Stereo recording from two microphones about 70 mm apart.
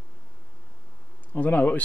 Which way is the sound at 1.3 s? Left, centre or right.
Left.